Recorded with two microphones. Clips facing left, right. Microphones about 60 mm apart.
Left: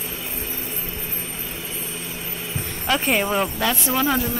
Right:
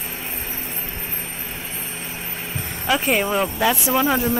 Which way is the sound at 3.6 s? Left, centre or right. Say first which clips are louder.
Right 3 dB; centre.